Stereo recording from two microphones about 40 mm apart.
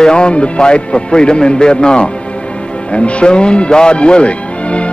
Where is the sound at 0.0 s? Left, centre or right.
Left.